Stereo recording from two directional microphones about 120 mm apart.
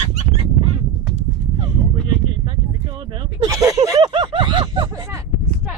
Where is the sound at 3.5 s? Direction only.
30° right (ahead or behind).